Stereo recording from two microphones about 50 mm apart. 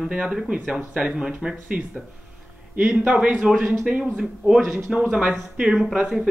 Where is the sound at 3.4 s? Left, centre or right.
Centre.